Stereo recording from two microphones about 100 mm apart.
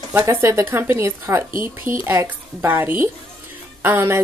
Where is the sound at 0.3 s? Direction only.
30° right (ahead or behind).